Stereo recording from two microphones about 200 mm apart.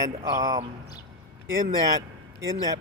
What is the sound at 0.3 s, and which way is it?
Speech, 20° right (ahead or behind).